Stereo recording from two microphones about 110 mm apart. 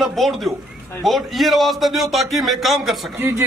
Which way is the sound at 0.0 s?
Centre (ahead or behind).